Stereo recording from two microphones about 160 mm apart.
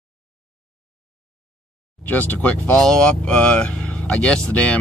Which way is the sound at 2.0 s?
10° left (ahead or behind).